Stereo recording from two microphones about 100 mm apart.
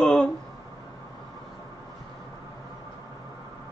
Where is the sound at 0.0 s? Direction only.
5° left (ahead or behind).